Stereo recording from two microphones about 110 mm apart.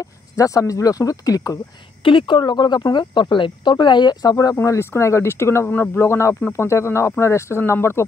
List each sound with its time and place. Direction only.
0.0 s speech: 30° left (ahead or behind)
2.0 s speech: 50° left (ahead or behind)
4.6 s speech: 25° left (ahead or behind)